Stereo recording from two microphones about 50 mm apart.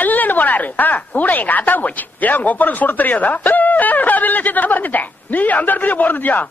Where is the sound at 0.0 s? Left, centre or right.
Left.